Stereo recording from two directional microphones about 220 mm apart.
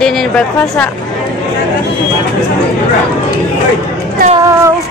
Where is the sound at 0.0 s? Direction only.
Centre (ahead or behind).